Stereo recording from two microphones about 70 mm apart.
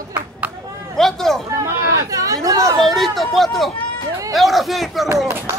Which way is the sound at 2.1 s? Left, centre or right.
Right.